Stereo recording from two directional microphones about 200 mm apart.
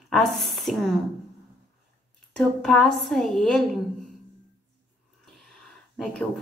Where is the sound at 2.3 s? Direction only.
Centre (ahead or behind).